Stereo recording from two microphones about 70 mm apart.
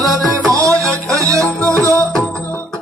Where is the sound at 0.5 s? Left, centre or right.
Right.